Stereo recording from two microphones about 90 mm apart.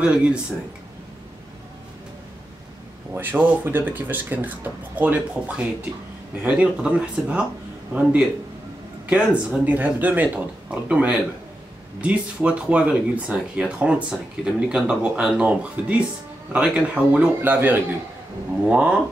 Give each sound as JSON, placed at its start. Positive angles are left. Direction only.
{"t": 0.0, "sound": "speech", "side_deg": -10}
{"t": 3.2, "sound": "speech", "side_deg": -25}
{"t": 9.0, "sound": "speech", "side_deg": -15}